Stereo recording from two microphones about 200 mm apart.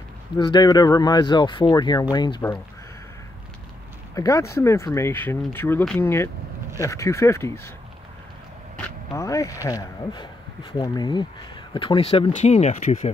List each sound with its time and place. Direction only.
0.4 s speech: 20° left (ahead or behind)
4.1 s speech: 15° left (ahead or behind)
9.1 s speech: 15° left (ahead or behind); by 13.1 s 35° left (ahead or behind)